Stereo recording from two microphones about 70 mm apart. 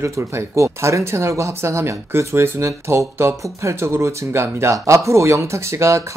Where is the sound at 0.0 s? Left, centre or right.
Right.